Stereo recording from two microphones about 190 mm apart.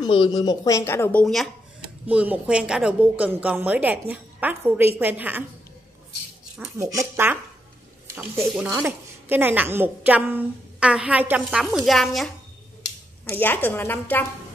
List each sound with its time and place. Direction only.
0.0 s speech: 25° left (ahead or behind)
1.2 s a woman's voice: centre (ahead or behind)
6.8 s a woman's voice: 15° right (ahead or behind); by 14.2 s 10° left (ahead or behind)